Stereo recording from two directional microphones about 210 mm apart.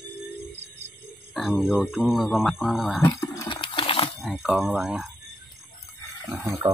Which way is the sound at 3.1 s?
15° left (ahead or behind).